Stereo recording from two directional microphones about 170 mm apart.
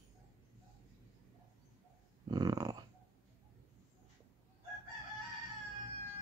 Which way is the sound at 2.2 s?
20° right (ahead or behind).